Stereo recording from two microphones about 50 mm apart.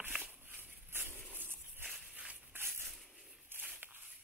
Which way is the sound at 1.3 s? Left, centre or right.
Right.